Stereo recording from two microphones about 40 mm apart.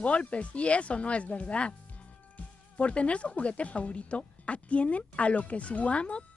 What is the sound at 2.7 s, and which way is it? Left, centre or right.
Speech, left.